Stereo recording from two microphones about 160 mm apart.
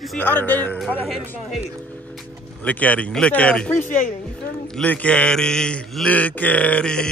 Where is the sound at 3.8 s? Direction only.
55° left (ahead or behind).